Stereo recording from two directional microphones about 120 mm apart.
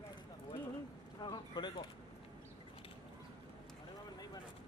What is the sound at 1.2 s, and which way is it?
Speech, 40° left (ahead or behind).